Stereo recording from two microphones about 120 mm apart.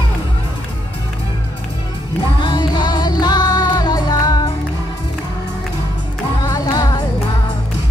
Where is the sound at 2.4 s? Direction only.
35° left (ahead or behind).